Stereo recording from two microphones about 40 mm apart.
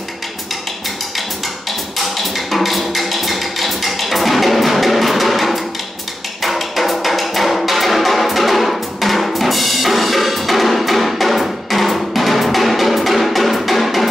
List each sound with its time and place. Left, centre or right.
2.0 s music: centre